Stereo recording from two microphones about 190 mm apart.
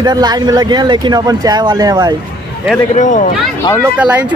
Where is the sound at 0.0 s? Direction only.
20° right (ahead or behind).